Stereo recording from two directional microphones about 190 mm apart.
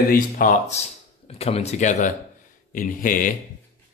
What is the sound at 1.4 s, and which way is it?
A man's voice, 35° left (ahead or behind).